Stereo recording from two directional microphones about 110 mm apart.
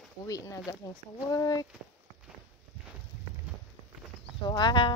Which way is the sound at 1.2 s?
35° left (ahead or behind).